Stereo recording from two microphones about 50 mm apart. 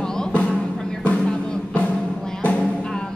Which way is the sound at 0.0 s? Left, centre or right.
Centre.